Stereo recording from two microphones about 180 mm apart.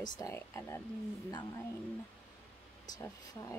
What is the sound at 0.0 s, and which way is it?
Speech, 20° left (ahead or behind).